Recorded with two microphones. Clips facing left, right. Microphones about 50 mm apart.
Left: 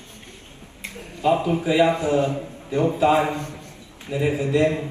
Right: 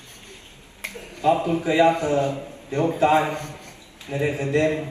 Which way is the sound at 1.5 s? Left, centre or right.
Right.